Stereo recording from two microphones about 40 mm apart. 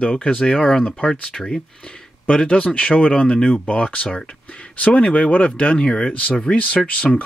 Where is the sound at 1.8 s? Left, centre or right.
Left.